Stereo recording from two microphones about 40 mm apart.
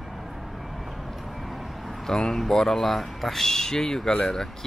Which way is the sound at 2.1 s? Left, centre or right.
Centre.